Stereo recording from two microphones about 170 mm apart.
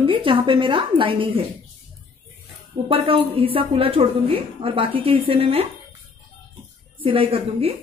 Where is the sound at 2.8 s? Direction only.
35° right (ahead or behind).